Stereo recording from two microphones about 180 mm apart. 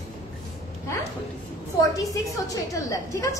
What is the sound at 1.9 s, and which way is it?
A woman's voice, 20° left (ahead or behind).